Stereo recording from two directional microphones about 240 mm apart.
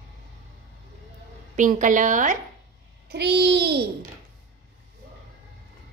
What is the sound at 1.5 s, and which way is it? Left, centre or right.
Speech, right.